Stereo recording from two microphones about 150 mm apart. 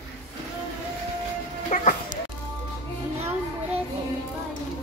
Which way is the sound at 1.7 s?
60° left (ahead or behind).